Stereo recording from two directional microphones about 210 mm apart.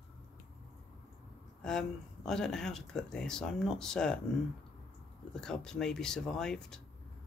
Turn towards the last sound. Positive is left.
turn(degrees=5)  # may be behind; listen again after turning